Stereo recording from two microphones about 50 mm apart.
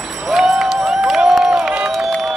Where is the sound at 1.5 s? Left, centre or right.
Centre.